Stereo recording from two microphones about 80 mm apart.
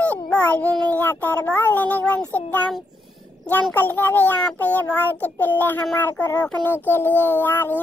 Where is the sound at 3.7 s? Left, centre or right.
Left.